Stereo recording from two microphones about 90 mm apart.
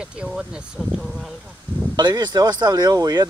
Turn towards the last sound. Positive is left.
turn(degrees=-45)  # may be behind; listen again after turning